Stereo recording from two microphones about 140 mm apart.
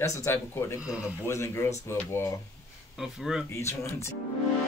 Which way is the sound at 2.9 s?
5° right (ahead or behind).